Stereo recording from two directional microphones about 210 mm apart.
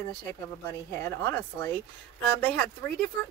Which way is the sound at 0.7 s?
10° left (ahead or behind).